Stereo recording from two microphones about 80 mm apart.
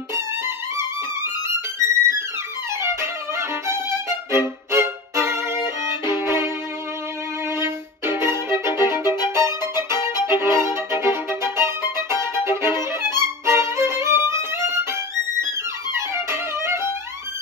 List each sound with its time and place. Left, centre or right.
1.8 s music: right
4.3 s violin: right
6.1 s music: right
7.5 s music: right
8.5 s violin: right
9.0 s music: left
9.8 s violin: right
10.6 s music: right
12.4 s violin: right
15.4 s music: right